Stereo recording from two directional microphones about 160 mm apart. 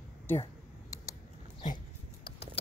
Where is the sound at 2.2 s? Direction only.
90° left.